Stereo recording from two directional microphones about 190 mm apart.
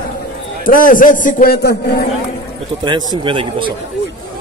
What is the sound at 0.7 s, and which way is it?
A man's voice, 45° left (ahead or behind).